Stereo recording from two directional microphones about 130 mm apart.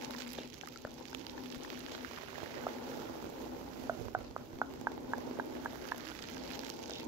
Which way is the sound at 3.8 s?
20° right (ahead or behind).